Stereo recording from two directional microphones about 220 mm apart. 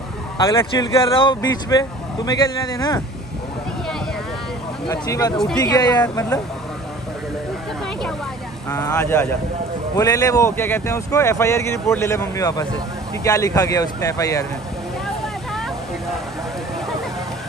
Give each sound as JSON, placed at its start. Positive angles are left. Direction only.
{"t": 0.4, "sound": "speech", "side_deg": 15}
{"t": 4.8, "sound": "speech", "side_deg": 20}
{"t": 8.6, "sound": "speech", "side_deg": 15}